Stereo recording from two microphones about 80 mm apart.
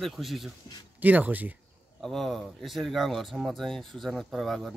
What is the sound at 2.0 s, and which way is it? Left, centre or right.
Speech, centre.